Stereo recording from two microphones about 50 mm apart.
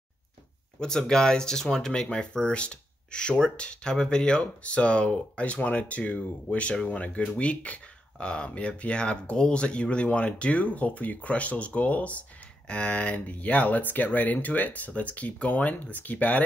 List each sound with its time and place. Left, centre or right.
0.7 s speech: centre; by 16.4 s left